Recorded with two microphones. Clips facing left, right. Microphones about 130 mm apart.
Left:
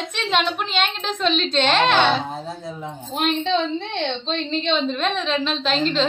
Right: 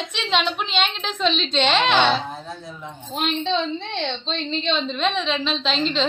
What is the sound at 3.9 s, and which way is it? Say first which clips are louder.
A woman's voice: left 2 dB; 10° left (ahead or behind).